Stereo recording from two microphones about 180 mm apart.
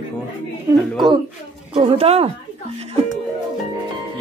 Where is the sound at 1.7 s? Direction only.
30° right (ahead or behind).